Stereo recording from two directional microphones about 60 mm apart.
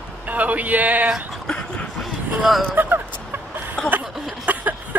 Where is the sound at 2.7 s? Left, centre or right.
Right.